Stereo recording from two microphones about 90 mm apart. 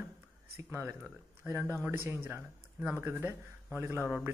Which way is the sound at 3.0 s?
25° right (ahead or behind).